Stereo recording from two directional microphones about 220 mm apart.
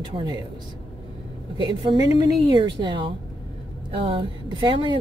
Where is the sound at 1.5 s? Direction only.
20° right (ahead or behind).